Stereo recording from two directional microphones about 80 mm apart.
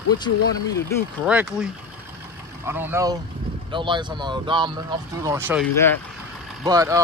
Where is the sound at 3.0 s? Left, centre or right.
Right.